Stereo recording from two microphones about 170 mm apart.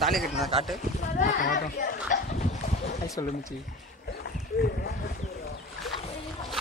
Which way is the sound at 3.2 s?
20° left (ahead or behind).